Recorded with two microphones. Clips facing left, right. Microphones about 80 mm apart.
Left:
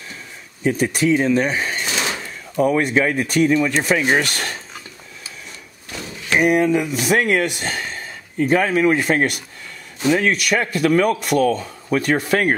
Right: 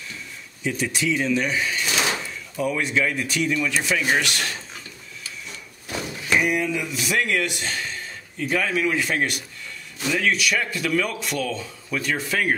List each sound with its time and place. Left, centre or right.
0.7 s speech: left
6.3 s speech: left